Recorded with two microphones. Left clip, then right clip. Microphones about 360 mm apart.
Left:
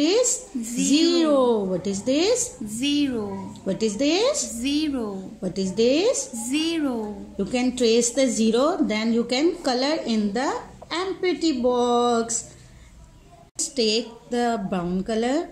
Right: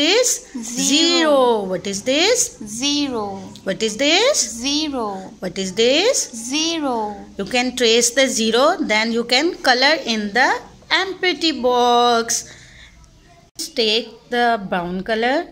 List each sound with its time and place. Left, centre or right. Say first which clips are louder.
0.0 s a sound: right 5 dB; right
0.6 s a sound: right 3 dB; centre
0.8 s a sound: right 4 dB; right
1.7 s a woman's voice: right 4 dB; right
2.8 s a woman's voice: right 3 dB; centre
3.2 s a woman's voice: right 5 dB; right
4.6 s a woman's voice: right 4 dB; centre
5.0 s a woman's voice: right 6 dB; right
6.5 s a woman's voice: right 4 dB; centre
7.3 s a woman's voice: right 5 dB; right
13.6 s a woman's voice: right 4 dB; right